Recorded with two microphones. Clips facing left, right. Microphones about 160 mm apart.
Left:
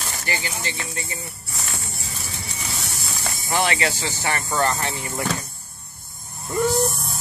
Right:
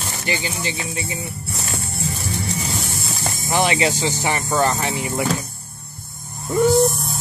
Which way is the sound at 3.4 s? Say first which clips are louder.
Right 4 dB; 20° right (ahead or behind).